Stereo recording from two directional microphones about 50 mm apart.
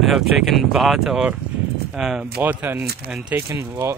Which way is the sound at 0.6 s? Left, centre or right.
Centre.